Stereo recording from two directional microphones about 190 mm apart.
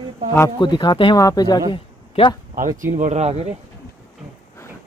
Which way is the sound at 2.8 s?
40° right (ahead or behind).